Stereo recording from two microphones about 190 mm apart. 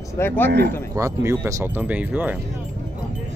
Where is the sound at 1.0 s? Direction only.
15° right (ahead or behind).